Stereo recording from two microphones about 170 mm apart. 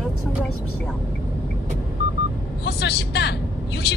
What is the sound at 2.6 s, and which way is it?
Speech, 70° left (ahead or behind).